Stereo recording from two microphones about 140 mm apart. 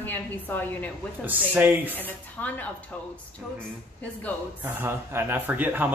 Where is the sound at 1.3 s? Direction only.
10° right (ahead or behind).